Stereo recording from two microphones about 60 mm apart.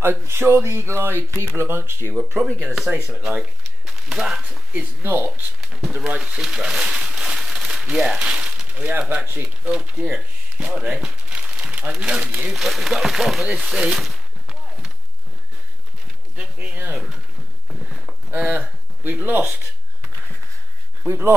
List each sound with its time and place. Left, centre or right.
0.0 s speech: right
2.9 s speech: right
4.1 s speech: centre
4.7 s speech: right
5.6 s speech: centre
10.1 s a sound: centre
10.8 s crumpling: centre
12.4 s speech: centre
16.3 s speech: right
16.9 s speech: centre
17.6 s a sound: centre
18.3 s speech: right
21.1 s speech: right